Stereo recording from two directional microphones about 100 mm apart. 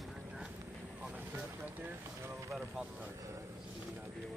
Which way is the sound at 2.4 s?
5° right (ahead or behind).